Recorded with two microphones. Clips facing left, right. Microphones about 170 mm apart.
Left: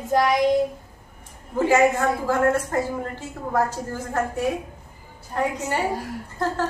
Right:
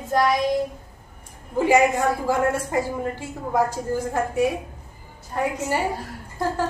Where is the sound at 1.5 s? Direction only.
15° right (ahead or behind).